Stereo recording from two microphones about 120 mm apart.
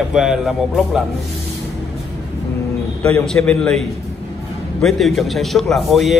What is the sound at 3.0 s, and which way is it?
A man's voice, 5° left (ahead or behind).